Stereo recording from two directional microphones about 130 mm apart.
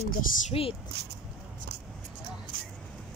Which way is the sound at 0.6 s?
45° left (ahead or behind).